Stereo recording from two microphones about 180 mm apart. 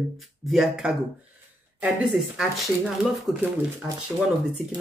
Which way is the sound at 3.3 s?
Centre (ahead or behind).